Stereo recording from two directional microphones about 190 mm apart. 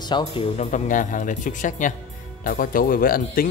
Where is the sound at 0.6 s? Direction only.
40° left (ahead or behind).